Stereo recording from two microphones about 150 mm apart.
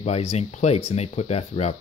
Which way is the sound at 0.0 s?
45° left (ahead or behind).